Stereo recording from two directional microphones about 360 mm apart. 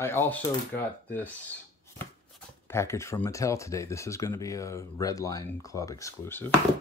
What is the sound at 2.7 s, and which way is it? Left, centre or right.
Speech, centre.